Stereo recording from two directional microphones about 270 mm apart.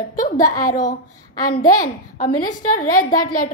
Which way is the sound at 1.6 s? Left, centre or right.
Left.